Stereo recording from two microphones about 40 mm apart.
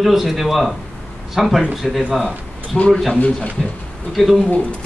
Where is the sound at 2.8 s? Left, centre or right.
Centre.